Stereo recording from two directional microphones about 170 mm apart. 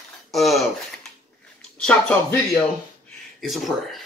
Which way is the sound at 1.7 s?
5° left (ahead or behind).